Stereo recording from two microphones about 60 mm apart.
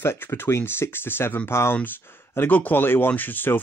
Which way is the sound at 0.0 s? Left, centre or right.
Left.